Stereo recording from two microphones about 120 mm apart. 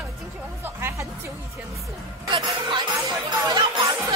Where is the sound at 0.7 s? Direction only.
20° right (ahead or behind).